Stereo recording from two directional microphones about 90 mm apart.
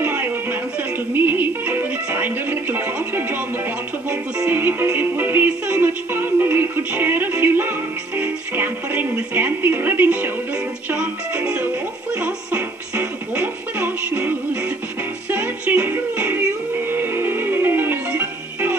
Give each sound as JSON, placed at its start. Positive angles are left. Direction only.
{"t": 0.0, "sound": "music", "side_deg": -20}
{"t": 4.5, "sound": "music", "side_deg": -25}